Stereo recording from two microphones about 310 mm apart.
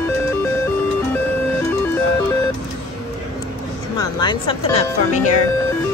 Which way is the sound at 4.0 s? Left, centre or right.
Centre.